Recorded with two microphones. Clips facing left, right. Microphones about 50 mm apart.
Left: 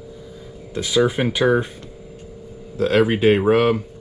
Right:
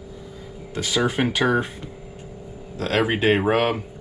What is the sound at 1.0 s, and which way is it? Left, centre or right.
Speech, centre.